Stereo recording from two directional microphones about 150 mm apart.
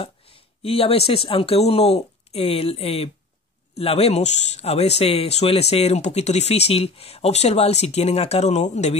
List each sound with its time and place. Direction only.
0.0 s speech: 40° left (ahead or behind)